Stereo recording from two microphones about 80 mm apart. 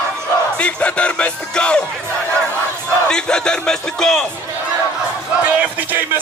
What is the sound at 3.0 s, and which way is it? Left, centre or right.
Music, centre.